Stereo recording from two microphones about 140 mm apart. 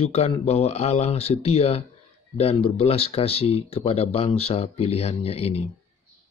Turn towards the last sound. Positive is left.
turn(degrees=45)  # may be behind; listen again after turning